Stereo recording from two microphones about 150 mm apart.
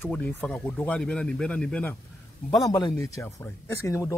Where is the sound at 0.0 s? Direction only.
10° left (ahead or behind).